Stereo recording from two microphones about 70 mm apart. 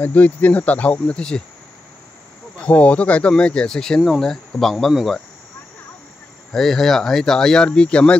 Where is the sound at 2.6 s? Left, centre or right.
Centre.